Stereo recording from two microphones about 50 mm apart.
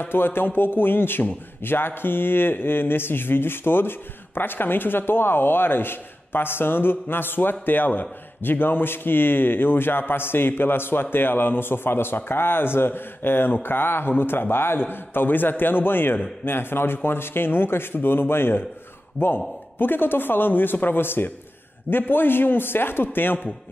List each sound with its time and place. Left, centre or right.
0.0 s a man's voice: left